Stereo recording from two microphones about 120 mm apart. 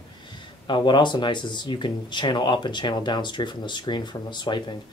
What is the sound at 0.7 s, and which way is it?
Speech, 40° left (ahead or behind).